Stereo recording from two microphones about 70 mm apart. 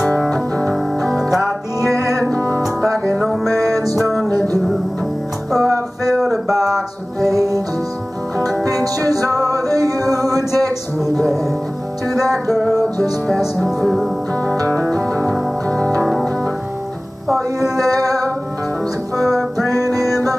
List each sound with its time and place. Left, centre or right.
0.3 s music: centre
1.0 s music: centre
3.6 s music: right
3.9 s music: centre
5.5 s music: centre
7.3 s music: right
8.4 s music: centre
8.8 s music: right
11.0 s music: centre
14.7 s music: centre
17.6 s music: right
19.1 s music: centre